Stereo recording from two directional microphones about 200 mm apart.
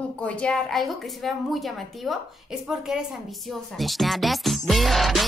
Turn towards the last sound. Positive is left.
turn(degrees=0)  # may be behind; listen again after turning